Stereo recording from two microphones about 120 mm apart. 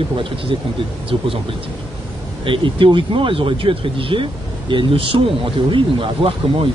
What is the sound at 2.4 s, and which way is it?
Speech, 45° right (ahead or behind).